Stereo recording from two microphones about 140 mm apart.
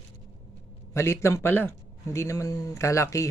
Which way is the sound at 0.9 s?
20° left (ahead or behind).